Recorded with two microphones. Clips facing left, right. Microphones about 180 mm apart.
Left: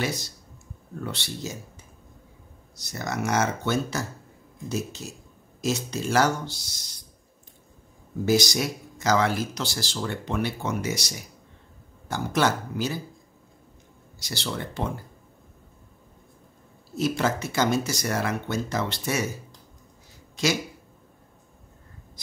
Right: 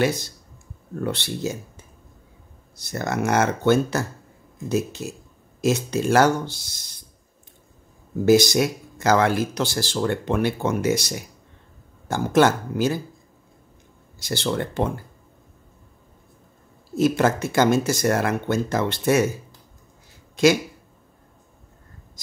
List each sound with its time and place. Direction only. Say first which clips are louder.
0.0 s speech: right 7 dB; 55° right (ahead or behind)
2.8 s speech: right 5 dB; 55° right (ahead or behind)
8.3 s speech: right 7 dB; 55° right (ahead or behind)
14.2 s speech: right 7 dB; 55° right (ahead or behind)
17.2 s speech: right 5 dB; 50° right (ahead or behind)